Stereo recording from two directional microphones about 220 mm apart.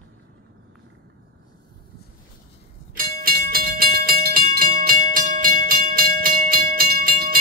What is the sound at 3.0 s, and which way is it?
Music, 45° right (ahead or behind).